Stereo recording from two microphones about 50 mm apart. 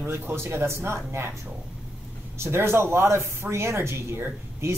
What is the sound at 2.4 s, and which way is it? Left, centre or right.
Speech, right.